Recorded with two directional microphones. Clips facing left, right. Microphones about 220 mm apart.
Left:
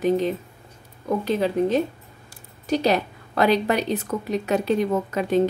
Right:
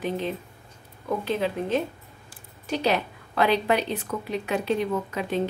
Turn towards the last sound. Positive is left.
turn(degrees=45)  # may be behind; listen again after turning